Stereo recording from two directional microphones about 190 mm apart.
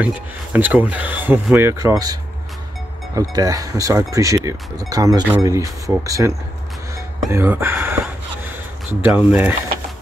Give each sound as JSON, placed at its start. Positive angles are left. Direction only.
{"t": 0.0, "sound": "speech", "side_deg": -10}
{"t": 3.2, "sound": "speech", "side_deg": -20}